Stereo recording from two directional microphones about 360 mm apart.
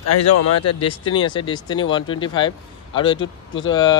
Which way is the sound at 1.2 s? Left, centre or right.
Centre.